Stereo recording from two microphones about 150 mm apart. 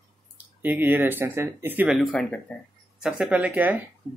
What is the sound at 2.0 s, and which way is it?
Speech, 5° left (ahead or behind).